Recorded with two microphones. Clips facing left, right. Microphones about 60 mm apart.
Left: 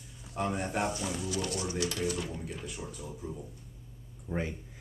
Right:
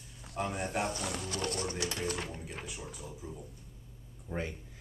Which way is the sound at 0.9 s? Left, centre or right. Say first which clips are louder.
Left 3 dB; right.